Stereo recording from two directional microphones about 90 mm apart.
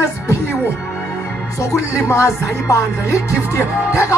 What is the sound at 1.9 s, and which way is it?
Speech, 35° left (ahead or behind).